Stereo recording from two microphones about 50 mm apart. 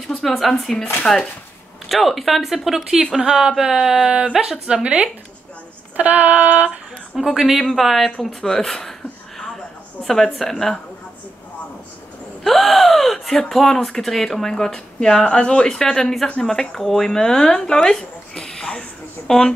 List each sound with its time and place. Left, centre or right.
0.2 s a woman's voice: centre; by 5.1 s right
5.9 s female singing: right
7.2 s a woman's voice: centre
10.0 s speech: centre
12.4 s speech: centre